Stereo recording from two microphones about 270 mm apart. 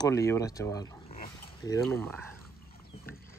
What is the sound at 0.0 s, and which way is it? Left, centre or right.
Speech, centre.